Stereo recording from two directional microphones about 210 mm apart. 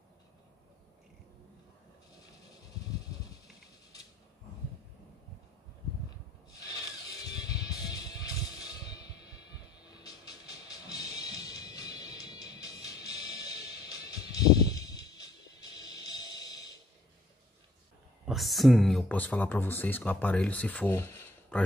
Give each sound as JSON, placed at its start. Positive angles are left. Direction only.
{"t": 7.2, "sound": "music", "side_deg": 15}
{"t": 18.2, "sound": "speech", "side_deg": 0}